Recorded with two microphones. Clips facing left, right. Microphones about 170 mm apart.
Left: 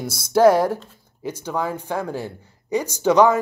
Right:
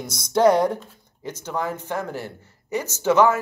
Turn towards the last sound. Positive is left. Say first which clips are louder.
# left 2 dB
turn(degrees=15)  # may be behind; listen again after turning